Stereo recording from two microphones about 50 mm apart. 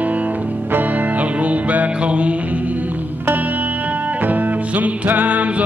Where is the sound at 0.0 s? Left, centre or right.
Right.